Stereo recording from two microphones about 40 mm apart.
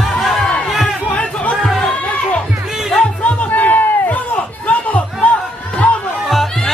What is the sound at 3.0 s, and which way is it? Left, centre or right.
Music, left.